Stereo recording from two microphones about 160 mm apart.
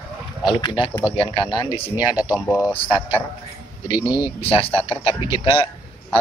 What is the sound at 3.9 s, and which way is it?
Speech, 30° left (ahead or behind).